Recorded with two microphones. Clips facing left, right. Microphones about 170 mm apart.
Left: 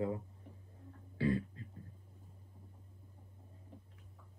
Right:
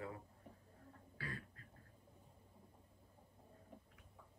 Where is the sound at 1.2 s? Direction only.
25° left (ahead or behind).